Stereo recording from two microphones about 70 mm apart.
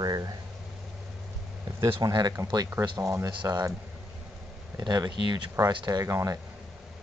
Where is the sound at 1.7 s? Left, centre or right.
Right.